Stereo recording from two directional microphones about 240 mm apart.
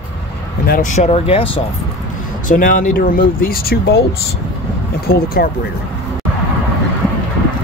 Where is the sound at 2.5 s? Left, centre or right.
Left.